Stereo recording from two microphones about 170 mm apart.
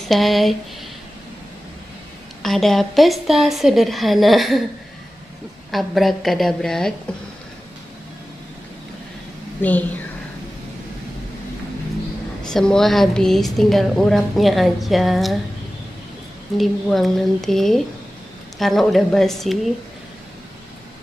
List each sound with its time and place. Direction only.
0.1 s a woman's voice: centre (ahead or behind)
2.4 s a woman's voice: centre (ahead or behind)
5.7 s a woman's voice: centre (ahead or behind)
9.6 s a woman's voice: 10° left (ahead or behind)
12.5 s a woman's voice: centre (ahead or behind)
16.5 s a woman's voice: centre (ahead or behind)